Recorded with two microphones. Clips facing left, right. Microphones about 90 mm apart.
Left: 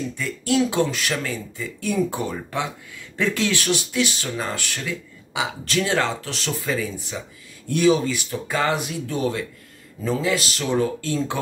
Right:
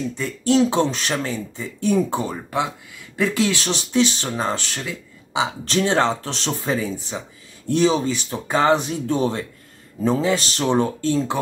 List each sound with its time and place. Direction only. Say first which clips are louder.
0.2 s speech: right 4 dB; 25° right (ahead or behind)